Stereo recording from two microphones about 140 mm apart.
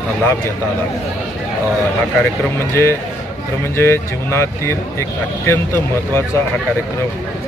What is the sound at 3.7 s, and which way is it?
Speech, 20° left (ahead or behind).